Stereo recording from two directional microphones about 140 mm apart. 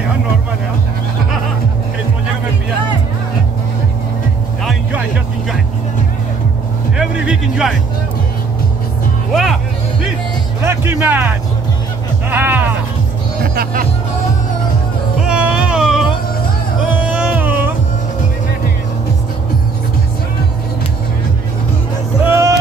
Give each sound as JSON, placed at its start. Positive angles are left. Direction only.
{"t": 7.0, "sound": "music", "side_deg": -5}
{"t": 9.3, "sound": "music", "side_deg": 0}
{"t": 10.6, "sound": "music", "side_deg": -20}
{"t": 13.4, "sound": "music", "side_deg": -90}
{"t": 15.2, "sound": "a sound", "side_deg": -5}
{"t": 16.9, "sound": "music", "side_deg": -10}
{"t": 22.2, "sound": "music", "side_deg": -20}